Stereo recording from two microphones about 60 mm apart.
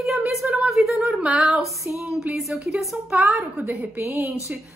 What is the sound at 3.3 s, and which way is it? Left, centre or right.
A woman's voice, right.